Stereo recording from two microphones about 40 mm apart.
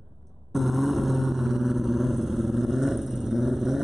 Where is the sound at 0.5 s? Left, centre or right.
Centre.